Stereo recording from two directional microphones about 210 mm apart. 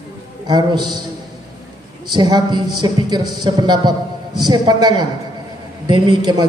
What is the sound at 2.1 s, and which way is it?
A man's voice, 20° right (ahead or behind).